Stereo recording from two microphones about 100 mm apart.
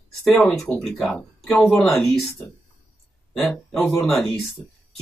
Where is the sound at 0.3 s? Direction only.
15° left (ahead or behind).